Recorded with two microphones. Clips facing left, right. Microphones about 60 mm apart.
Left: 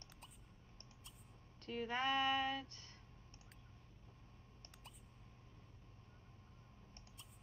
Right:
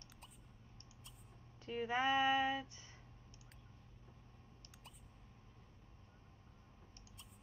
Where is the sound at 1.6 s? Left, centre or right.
Centre.